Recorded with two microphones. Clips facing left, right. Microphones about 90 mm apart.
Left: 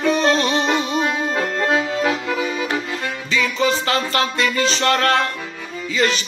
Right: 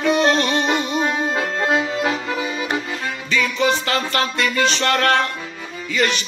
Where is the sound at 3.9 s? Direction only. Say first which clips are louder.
Left 1 dB; 35° left (ahead or behind).